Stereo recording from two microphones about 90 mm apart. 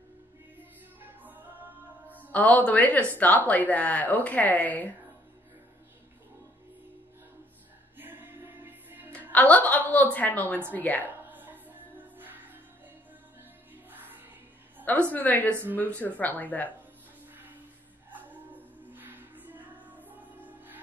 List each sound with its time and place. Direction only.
0.6 s music: 20° right (ahead or behind)
2.3 s speech: 15° left (ahead or behind)
8.0 s music: 20° right (ahead or behind)
9.3 s a woman's voice: 15° left (ahead or behind)
11.2 s music: 20° right (ahead or behind)
13.9 s music: 20° right (ahead or behind)
15.1 s a woman's voice: 20° left (ahead or behind)
18.9 s music: 20° right (ahead or behind)